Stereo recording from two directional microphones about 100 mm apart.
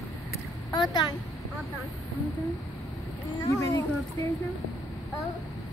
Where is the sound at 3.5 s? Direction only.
35° left (ahead or behind).